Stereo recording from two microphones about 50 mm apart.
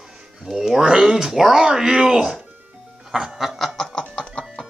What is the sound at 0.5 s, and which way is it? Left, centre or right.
Speech, centre.